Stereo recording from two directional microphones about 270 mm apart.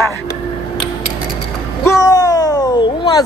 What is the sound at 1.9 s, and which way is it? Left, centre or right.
Music, centre.